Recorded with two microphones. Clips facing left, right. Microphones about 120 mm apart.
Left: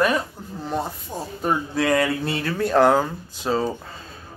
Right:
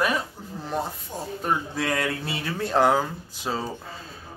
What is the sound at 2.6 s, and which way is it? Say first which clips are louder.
Speech: left 4 dB; 20° right (ahead or behind).